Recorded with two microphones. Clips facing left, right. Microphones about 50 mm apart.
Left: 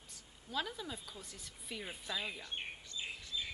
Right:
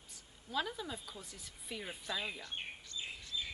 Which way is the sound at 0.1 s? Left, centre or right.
Centre.